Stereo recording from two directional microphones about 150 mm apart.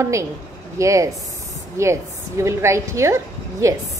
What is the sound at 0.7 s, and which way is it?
A woman's voice, 20° right (ahead or behind).